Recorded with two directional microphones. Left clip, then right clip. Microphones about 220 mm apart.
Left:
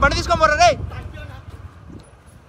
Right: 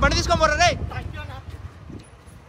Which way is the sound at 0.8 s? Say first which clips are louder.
Right 2 dB; centre (ahead or behind).